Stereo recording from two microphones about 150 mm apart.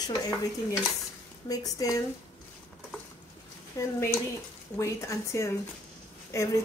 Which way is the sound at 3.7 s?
20° left (ahead or behind).